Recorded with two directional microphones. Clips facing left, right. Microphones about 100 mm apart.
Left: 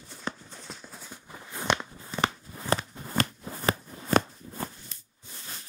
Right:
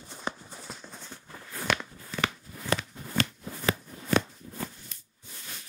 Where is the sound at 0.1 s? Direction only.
15° right (ahead or behind); by 4.9 s 35° left (ahead or behind).